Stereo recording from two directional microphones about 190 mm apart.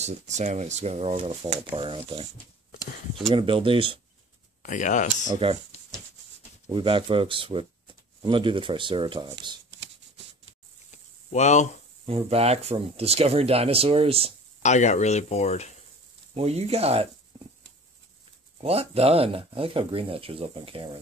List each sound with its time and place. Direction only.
0.0 s speech: 35° right (ahead or behind)
3.3 s speech: 25° right (ahead or behind)
4.6 s speech: 40° left (ahead or behind)
5.3 s speech: 30° right (ahead or behind)
6.7 s speech: 25° right (ahead or behind)
10.9 s a sound: 40° left (ahead or behind)
12.1 s speech: 30° right (ahead or behind)
14.6 s speech: 40° left (ahead or behind)
16.3 s speech: 35° right (ahead or behind)
18.6 s speech: 30° right (ahead or behind)